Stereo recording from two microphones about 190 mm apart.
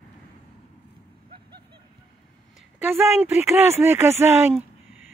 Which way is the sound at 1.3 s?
25° right (ahead or behind).